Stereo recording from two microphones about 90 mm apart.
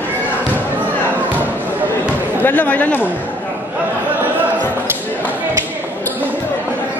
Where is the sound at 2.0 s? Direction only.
20° left (ahead or behind).